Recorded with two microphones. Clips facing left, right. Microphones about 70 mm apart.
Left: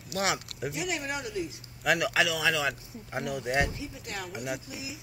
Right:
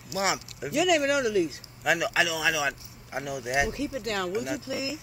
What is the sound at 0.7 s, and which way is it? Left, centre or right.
Speech, right.